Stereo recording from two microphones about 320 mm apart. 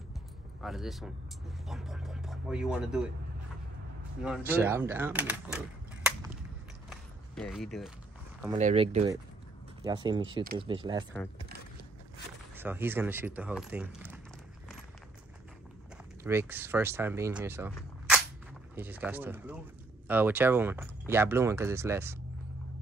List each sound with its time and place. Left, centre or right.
0.6 s speech: centre
4.5 s speech: centre
7.3 s speech: centre
8.5 s speech: centre
12.5 s speech: centre
16.3 s speech: centre
18.8 s speech: centre